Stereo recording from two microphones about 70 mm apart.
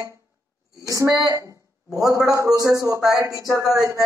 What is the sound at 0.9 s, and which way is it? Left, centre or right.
Speech, right.